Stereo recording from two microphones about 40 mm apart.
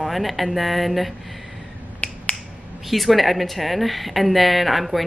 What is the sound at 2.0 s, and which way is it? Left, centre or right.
Finger snapping, left.